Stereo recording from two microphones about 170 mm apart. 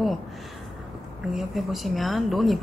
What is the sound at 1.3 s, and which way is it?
A woman's voice, centre (ahead or behind).